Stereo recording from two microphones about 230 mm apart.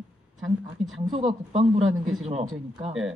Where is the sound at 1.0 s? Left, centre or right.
Right.